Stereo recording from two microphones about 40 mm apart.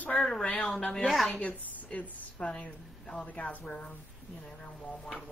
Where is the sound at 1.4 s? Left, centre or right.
Left.